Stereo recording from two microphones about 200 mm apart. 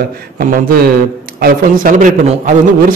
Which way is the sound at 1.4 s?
40° right (ahead or behind).